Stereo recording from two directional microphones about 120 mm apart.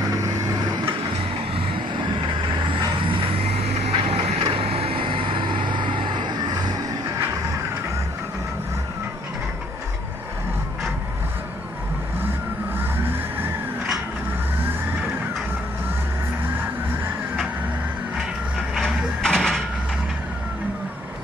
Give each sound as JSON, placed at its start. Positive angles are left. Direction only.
{"t": 2.6, "sound": "vehicle", "side_deg": -45}
{"t": 12.7, "sound": "vehicle", "side_deg": -20}
{"t": 18.8, "sound": "a sound", "side_deg": 5}